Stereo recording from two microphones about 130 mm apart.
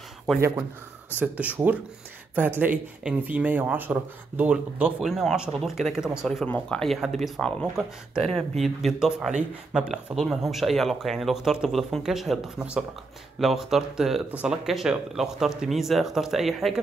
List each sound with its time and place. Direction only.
1.2 s speech: 10° right (ahead or behind)
6.4 s speech: 10° left (ahead or behind)